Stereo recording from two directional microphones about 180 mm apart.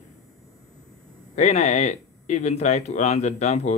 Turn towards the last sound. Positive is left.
turn(degrees=40)  # may be behind; listen again after turning